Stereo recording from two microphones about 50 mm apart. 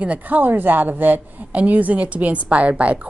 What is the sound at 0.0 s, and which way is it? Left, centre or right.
A woman's voice, right.